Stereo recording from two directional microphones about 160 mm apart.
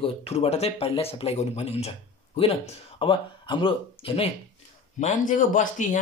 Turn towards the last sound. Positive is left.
turn(degrees=55)  # may be behind; listen again after turning